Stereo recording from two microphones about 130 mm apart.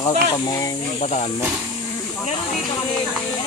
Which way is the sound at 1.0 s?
60° left (ahead or behind).